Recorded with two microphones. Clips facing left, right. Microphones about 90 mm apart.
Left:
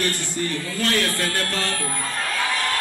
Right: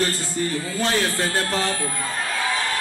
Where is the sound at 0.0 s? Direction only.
25° right (ahead or behind).